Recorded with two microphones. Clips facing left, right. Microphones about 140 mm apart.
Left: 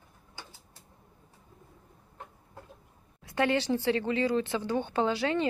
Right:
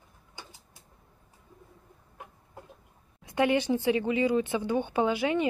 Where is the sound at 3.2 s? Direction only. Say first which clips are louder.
Right 2 dB; 15° right (ahead or behind).